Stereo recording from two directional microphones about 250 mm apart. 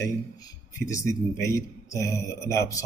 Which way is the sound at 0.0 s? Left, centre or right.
Centre.